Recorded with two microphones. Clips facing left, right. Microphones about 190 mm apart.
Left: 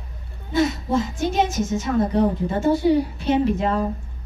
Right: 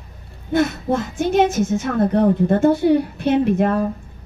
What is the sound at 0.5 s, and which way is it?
A woman's voice, 55° right (ahead or behind).